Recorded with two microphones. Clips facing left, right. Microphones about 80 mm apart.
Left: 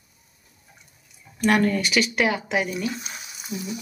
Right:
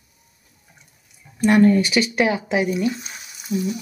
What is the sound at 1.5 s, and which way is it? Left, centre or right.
Speech, right.